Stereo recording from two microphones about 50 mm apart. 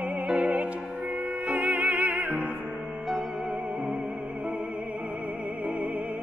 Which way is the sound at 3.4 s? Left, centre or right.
Right.